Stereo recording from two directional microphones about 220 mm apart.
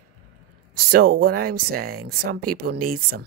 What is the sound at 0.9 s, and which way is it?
Speech, 40° right (ahead or behind).